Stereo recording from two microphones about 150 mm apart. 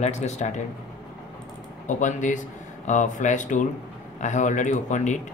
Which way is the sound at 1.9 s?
55° left (ahead or behind).